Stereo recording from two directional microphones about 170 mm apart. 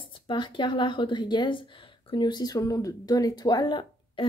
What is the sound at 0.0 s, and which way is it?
A woman's voice, 30° left (ahead or behind).